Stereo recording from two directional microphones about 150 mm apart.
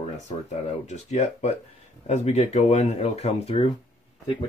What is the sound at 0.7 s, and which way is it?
Speech, 50° left (ahead or behind).